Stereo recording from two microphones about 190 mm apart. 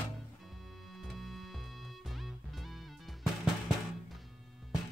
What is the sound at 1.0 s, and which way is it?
Music, centre (ahead or behind).